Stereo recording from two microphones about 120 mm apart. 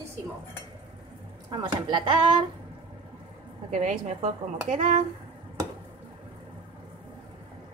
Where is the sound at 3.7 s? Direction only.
80° right.